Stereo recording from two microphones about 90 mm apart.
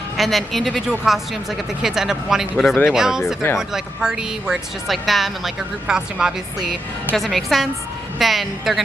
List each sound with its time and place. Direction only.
0.2 s speech: centre (ahead or behind)